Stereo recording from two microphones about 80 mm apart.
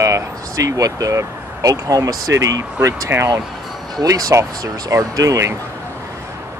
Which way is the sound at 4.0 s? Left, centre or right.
Right.